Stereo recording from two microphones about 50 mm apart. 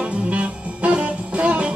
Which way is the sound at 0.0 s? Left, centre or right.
Right.